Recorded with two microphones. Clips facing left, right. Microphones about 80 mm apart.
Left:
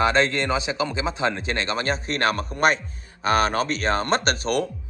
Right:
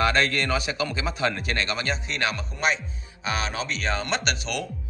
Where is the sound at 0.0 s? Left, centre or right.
Left.